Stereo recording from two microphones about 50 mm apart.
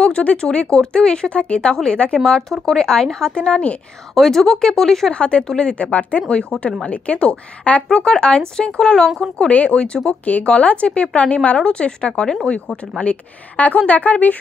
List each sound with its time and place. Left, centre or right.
0.0 s speech: left
4.1 s speech: centre
5.1 s speech: left
5.9 s speech: left
9.5 s speech: left